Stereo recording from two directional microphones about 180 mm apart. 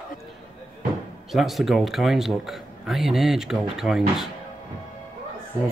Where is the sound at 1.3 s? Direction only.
Centre (ahead or behind).